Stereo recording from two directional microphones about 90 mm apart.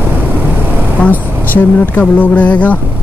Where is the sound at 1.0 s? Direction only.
15° left (ahead or behind).